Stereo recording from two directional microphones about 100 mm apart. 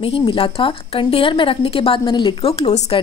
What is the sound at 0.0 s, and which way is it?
A woman's voice, 65° left (ahead or behind).